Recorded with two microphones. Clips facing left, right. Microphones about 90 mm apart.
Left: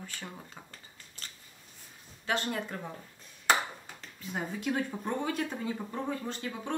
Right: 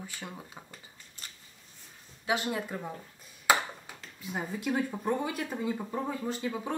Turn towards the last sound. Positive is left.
turn(degrees=-10)  # may be behind; listen again after turning